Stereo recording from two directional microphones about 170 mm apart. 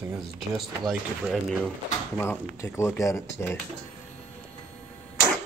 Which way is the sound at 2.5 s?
15° left (ahead or behind).